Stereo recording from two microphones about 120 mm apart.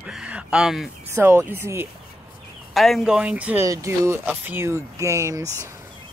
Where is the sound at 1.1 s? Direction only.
20° right (ahead or behind).